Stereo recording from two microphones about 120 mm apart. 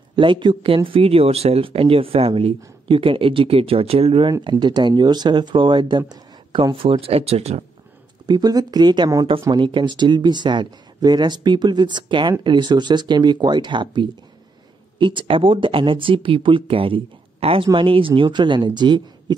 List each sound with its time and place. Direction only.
0.1 s speech: 45° right (ahead or behind)
4.3 s speech: 40° right (ahead or behind); by 7.6 s 60° right (ahead or behind)
8.3 s speech: 35° right (ahead or behind)